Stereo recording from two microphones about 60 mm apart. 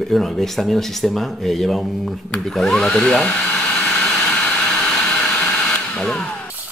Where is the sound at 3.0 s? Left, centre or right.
Centre.